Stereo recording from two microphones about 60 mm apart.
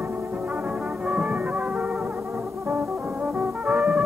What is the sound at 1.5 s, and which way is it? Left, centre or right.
Music, right.